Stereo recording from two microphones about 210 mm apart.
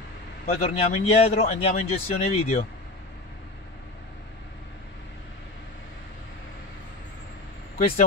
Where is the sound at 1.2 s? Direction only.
30° left (ahead or behind).